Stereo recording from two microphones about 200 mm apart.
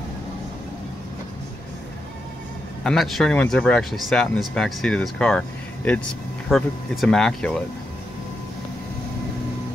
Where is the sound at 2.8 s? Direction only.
Centre (ahead or behind).